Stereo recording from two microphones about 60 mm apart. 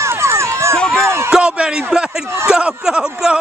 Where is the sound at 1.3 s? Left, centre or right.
Centre.